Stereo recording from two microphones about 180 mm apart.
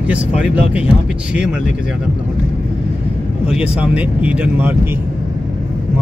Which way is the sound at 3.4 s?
5° right (ahead or behind).